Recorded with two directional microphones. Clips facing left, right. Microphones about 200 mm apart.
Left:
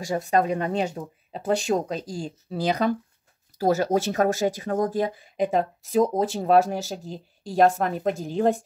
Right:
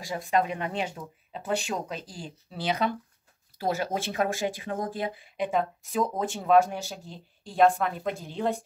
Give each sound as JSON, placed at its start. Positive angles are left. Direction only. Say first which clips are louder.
{"t": 0.0, "sound": "speech", "louder": "left 4 dB", "side_deg": 45}